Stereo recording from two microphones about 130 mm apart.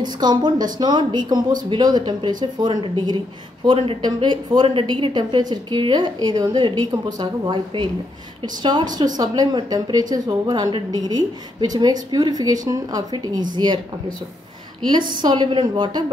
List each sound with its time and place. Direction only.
0.0 s a woman's voice: 35° right (ahead or behind)
14.9 s a woman's voice: 35° right (ahead or behind)